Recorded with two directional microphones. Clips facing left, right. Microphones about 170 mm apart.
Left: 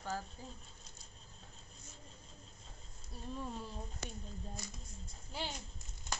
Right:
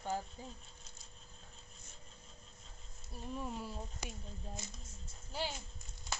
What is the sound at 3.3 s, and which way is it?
Speech, 10° right (ahead or behind).